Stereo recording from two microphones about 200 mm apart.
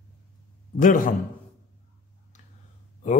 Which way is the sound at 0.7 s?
40° left (ahead or behind).